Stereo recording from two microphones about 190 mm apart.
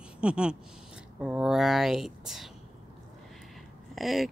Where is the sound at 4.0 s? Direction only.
Centre (ahead or behind).